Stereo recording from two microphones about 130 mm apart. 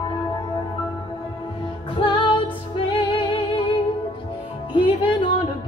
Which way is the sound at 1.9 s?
40° left (ahead or behind).